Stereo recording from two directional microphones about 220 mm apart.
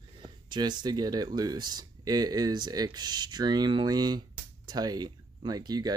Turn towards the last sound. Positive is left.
turn(degrees=-20)  # may be behind; listen again after turning